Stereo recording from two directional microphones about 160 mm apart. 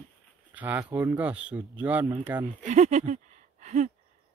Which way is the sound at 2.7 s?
50° right (ahead or behind).